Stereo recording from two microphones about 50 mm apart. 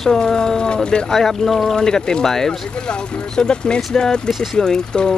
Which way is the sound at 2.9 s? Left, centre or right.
Centre.